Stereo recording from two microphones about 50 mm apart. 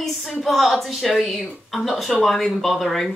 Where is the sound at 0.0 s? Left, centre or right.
Centre.